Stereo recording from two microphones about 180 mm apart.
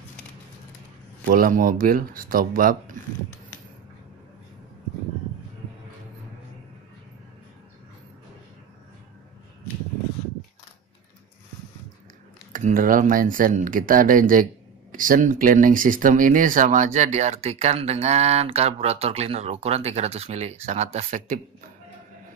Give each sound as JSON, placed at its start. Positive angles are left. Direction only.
{"t": 1.2, "sound": "speech", "side_deg": -50}
{"t": 12.5, "sound": "speech", "side_deg": -50}